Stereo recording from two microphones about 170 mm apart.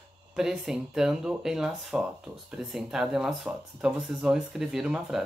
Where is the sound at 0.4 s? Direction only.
5° right (ahead or behind).